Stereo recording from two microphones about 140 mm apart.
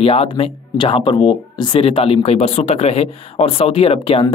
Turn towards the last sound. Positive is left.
turn(degrees=40)  # may be behind; listen again after turning